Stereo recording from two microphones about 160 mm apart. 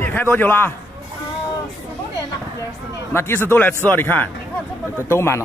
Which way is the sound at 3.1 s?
15° left (ahead or behind).